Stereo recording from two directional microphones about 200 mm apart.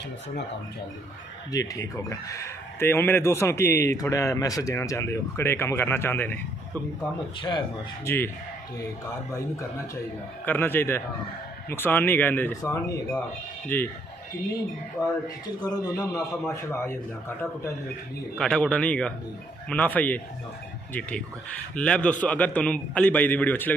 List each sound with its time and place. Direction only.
1.5 s a man's voice: 15° left (ahead or behind)
7.4 s speech: 25° left (ahead or behind)
10.4 s a man's voice: 10° left (ahead or behind)
15.7 s a man's voice: 15° left (ahead or behind)
21.7 s a man's voice: 5° left (ahead or behind)